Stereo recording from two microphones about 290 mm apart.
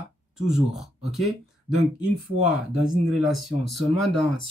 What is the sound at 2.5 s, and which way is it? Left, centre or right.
Speech, left.